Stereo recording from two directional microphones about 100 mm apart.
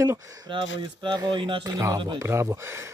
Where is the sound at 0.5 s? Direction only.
55° right (ahead or behind).